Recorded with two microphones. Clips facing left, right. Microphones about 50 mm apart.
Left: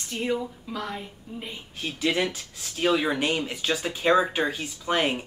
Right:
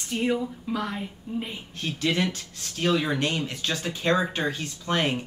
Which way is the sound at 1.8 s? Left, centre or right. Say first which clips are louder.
Even; centre.